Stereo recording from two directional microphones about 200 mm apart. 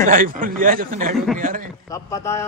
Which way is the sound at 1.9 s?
15° left (ahead or behind).